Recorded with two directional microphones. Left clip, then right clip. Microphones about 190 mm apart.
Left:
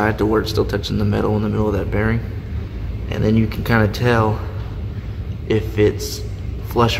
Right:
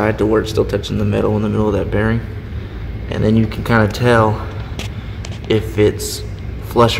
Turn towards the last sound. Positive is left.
turn(degrees=-5)  # may be behind; listen again after turning